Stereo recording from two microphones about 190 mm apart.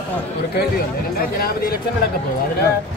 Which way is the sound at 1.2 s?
50° left (ahead or behind).